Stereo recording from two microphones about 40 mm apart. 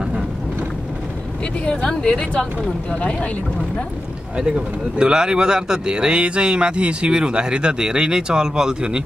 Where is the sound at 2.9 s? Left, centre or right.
Left.